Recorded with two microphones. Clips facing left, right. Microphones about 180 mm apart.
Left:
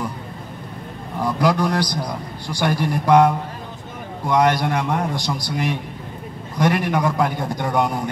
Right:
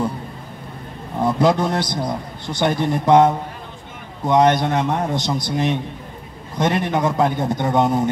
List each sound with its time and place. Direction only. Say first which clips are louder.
1.2 s a man's voice: right 2 dB; 25° right (ahead or behind)